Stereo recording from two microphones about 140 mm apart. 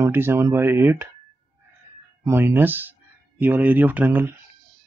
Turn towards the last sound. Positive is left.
turn(degrees=-15)  # may be behind; listen again after turning